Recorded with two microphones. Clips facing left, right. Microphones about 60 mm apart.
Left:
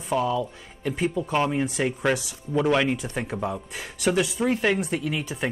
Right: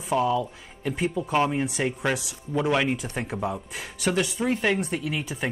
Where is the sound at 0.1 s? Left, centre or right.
Centre.